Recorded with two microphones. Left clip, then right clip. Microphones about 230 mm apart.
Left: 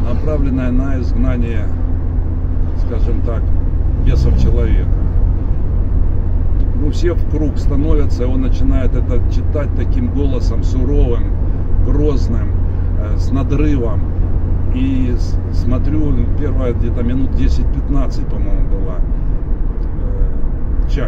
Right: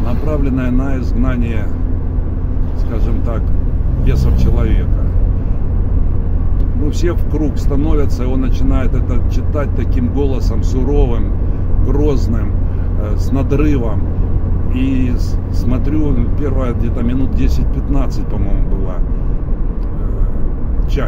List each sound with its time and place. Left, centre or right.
0.4 s speech: right
4.1 s vehicle: right
6.9 s speech: right
13.3 s speech: right